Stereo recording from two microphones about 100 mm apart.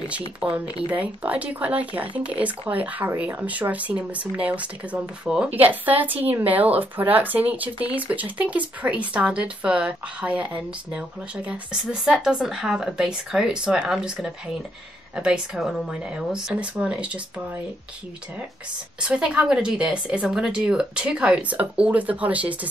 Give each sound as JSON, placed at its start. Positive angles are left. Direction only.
{"t": 0.8, "sound": "speech", "side_deg": -15}
{"t": 18.9, "sound": "speech", "side_deg": -10}